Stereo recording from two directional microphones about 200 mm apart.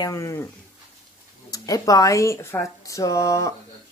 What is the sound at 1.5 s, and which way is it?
Speech, 20° left (ahead or behind).